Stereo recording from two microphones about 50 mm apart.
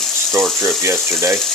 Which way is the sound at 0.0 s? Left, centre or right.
Centre.